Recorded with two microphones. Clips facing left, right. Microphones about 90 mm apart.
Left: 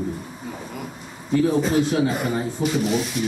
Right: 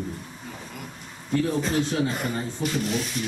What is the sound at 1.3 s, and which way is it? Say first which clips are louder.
A man's voice: left 5 dB; 5° left (ahead or behind).